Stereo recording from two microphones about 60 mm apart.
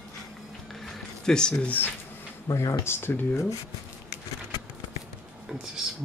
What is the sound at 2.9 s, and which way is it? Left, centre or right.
Speech, left.